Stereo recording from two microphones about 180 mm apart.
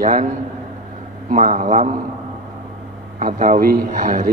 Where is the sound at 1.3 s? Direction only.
40° right (ahead or behind).